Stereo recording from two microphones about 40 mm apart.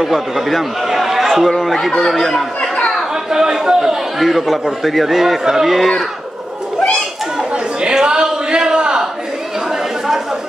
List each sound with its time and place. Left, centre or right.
0.0 s a man's voice: centre
0.8 s chatter: centre
1.5 s a man's voice: centre
3.3 s a man's voice: centre
4.2 s a man's voice: centre
7.8 s a sound: centre